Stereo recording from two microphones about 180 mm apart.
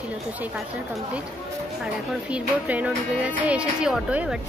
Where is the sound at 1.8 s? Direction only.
5° right (ahead or behind).